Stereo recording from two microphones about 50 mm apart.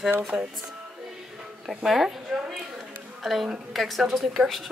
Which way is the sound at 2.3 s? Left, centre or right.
Right.